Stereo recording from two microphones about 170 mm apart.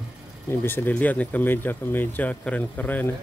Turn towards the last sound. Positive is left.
turn(degrees=10)  # may be behind; listen again after turning